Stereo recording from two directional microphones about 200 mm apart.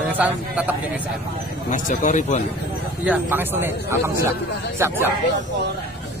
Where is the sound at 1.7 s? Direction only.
40° left (ahead or behind).